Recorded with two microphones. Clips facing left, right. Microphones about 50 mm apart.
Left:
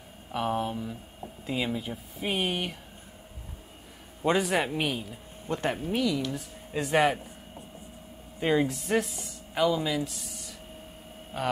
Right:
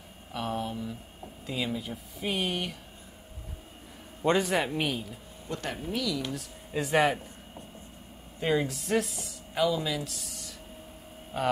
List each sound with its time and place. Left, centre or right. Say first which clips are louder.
0.3 s speech: left 4 dB; centre
4.2 s speech: even; centre
5.5 s speech: left 5 dB; left
6.7 s speech: left 1 dB; centre